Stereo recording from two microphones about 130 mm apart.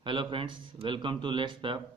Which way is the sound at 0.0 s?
40° right (ahead or behind).